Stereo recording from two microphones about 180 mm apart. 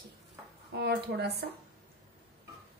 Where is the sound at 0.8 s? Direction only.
65° right (ahead or behind).